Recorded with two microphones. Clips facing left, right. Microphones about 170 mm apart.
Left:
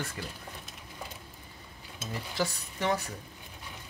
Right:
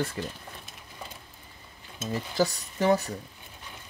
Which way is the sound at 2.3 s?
40° right (ahead or behind).